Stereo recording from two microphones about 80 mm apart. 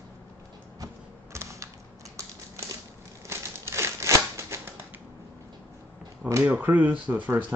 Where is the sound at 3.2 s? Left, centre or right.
Right.